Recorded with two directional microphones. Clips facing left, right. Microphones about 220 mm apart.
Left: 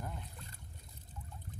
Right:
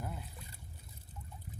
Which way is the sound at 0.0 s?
5° right (ahead or behind).